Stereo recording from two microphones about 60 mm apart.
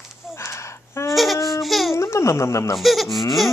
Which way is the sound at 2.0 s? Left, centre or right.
Left.